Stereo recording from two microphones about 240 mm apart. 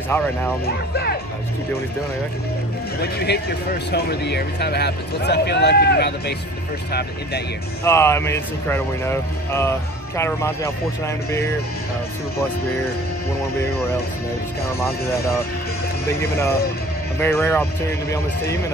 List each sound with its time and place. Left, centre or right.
0.1 s speech: centre
3.0 s speech: left
7.8 s speech: centre
14.8 s speech: centre